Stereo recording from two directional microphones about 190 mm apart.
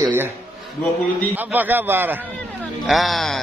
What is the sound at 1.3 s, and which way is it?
Speech, 10° right (ahead or behind).